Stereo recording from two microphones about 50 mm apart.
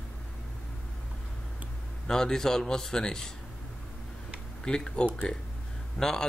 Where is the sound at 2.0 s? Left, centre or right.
Centre.